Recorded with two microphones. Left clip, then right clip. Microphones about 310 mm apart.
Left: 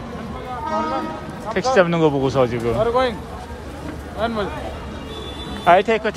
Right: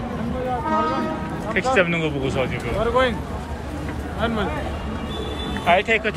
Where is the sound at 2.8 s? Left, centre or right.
Left.